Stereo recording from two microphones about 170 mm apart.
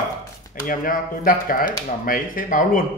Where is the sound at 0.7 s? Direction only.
55° left (ahead or behind).